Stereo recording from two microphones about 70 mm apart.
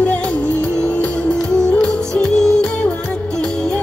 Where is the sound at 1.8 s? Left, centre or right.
Centre.